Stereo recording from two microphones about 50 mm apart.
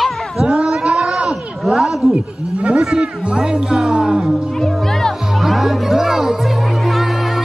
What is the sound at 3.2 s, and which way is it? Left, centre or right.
Music, centre.